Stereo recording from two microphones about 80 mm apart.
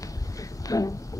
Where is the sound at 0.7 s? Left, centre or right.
Left.